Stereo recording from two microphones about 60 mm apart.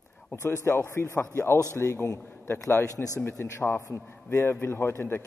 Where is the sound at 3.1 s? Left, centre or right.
Left.